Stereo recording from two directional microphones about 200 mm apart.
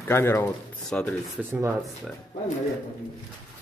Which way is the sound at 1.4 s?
10° right (ahead or behind).